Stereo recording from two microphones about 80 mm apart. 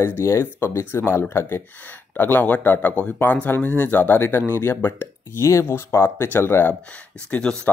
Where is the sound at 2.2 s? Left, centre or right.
Left.